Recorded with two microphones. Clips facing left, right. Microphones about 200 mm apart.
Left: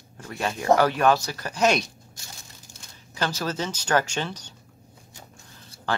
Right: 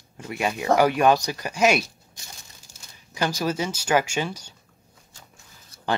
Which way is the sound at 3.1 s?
10° right (ahead or behind).